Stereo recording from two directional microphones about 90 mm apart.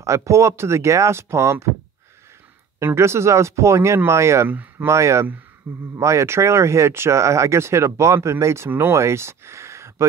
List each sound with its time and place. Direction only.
0.0 s speech: 35° right (ahead or behind)
2.8 s speech: 30° right (ahead or behind)
4.5 s speech: 20° right (ahead or behind)
4.8 s speech: 35° right (ahead or behind)